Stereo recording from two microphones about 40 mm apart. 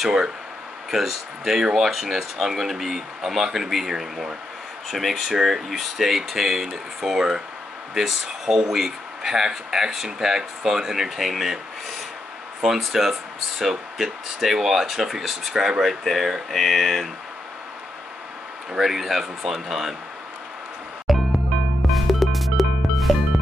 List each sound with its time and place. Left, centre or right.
0.0 s speech: centre
12.6 s speech: centre
16.0 s speech: centre
18.7 s speech: centre
21.1 s music: centre